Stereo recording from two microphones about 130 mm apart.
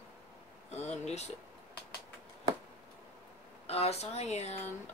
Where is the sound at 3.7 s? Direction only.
55° left (ahead or behind).